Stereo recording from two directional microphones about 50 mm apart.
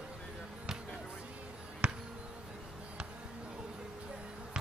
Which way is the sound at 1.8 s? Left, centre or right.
Centre.